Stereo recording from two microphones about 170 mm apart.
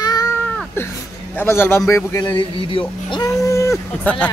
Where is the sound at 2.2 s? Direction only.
25° left (ahead or behind); by 4.3 s 10° left (ahead or behind).